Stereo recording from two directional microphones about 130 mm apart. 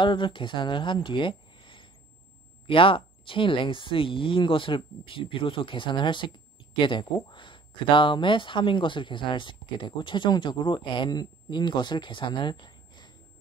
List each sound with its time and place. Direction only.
0.0 s speech: 40° left (ahead or behind)